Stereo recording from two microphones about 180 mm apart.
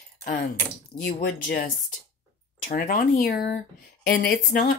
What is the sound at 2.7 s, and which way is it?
Speech, 50° left (ahead or behind).